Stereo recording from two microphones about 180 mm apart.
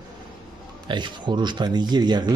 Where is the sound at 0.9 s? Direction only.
25° right (ahead or behind).